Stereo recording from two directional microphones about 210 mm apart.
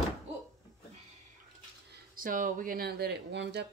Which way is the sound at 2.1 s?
40° right (ahead or behind).